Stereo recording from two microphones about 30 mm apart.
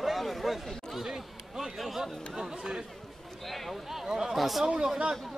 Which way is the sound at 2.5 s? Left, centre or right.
Right.